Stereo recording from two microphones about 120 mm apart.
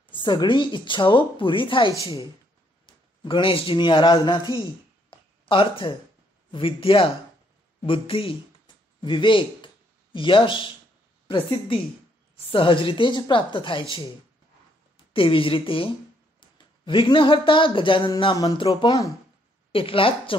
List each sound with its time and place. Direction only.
0.1 s a man's voice: 40° left (ahead or behind)
5.1 s a sound: 45° left (ahead or behind)
6.5 s speech: 45° left (ahead or behind)
15.1 s speech: 50° left (ahead or behind)
18.3 s speech: 30° left (ahead or behind)
19.7 s speech: 50° left (ahead or behind)